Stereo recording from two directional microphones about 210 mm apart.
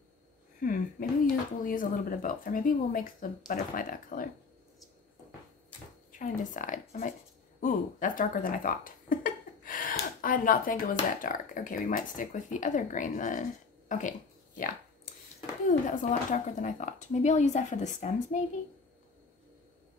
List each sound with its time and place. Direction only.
0.6 s speech: 40° left (ahead or behind)
6.1 s speech: 40° left (ahead or behind)